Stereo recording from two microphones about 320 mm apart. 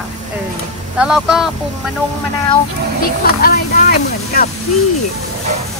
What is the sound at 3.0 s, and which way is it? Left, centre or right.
Speech, left.